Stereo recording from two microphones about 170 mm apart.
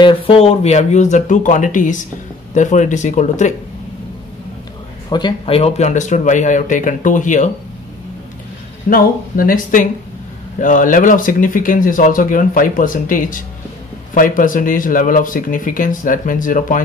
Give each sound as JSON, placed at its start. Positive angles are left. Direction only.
{"t": 0.0, "sound": "speech", "side_deg": 30}
{"t": 5.1, "sound": "speech", "side_deg": 30}
{"t": 8.9, "sound": "speech", "side_deg": 55}